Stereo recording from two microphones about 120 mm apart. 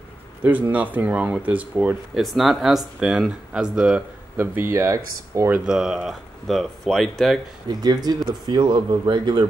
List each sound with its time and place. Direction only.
0.4 s speech: 15° right (ahead or behind)
4.4 s speech: 20° right (ahead or behind)
5.7 s speech: 5° right (ahead or behind)
7.8 s speech: 35° right (ahead or behind)